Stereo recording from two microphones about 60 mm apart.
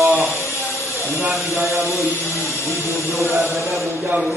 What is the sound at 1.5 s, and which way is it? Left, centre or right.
Speech, right.